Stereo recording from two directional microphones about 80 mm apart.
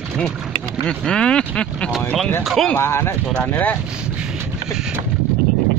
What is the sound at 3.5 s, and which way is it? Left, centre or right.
Speech, left.